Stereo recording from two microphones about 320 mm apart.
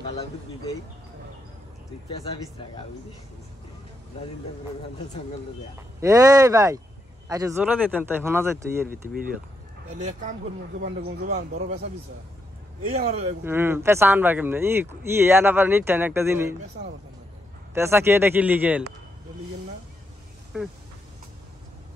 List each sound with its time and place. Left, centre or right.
5.9 s speech: centre
8.8 s speech: right
12.9 s speech: right
13.4 s speech: centre
17.7 s speech: centre